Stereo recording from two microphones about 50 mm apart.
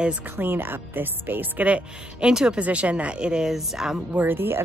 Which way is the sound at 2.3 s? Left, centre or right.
Centre.